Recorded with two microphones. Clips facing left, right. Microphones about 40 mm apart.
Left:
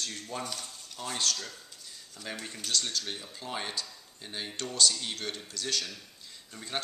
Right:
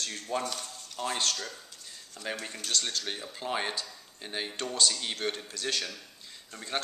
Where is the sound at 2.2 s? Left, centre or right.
Right.